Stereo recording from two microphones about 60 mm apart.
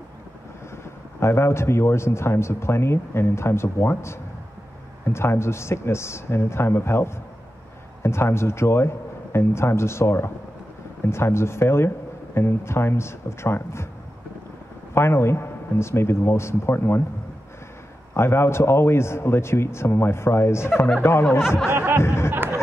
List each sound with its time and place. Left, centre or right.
1.2 s speech: left
15.0 s speech: left
18.1 s speech: left
21.7 s speech: right
22.0 s speech: left
22.3 s a sound: right